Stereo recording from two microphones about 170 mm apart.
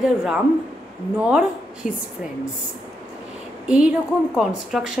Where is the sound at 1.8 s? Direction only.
50° left (ahead or behind).